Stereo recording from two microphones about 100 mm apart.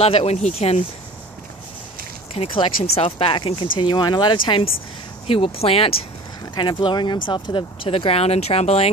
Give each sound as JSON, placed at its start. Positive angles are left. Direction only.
{"t": 0.0, "sound": "speech", "side_deg": 85}
{"t": 2.3, "sound": "speech", "side_deg": 65}
{"t": 5.2, "sound": "speech", "side_deg": 75}
{"t": 6.5, "sound": "speech", "side_deg": 50}